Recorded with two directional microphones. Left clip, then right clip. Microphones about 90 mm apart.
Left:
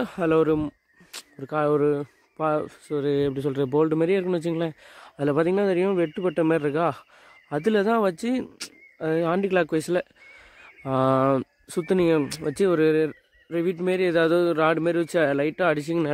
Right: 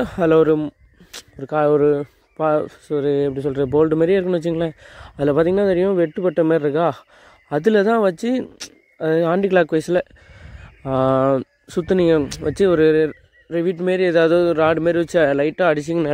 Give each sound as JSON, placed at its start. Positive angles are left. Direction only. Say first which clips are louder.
{"t": 0.0, "sound": "speech", "louder": "right 7 dB", "side_deg": -45}
{"t": 1.1, "sound": "speech", "louder": "right 6 dB", "side_deg": -30}
{"t": 3.2, "sound": "speech", "louder": "right 5 dB", "side_deg": -5}
{"t": 3.6, "sound": "speech", "louder": "right 6 dB", "side_deg": -25}
{"t": 9.7, "sound": "a sound", "louder": "right 6 dB", "side_deg": -25}
{"t": 10.8, "sound": "a man's voice", "louder": "right 4 dB", "side_deg": -15}